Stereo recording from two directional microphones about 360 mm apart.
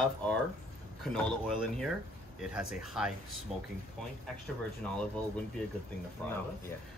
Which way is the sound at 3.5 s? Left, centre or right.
Centre.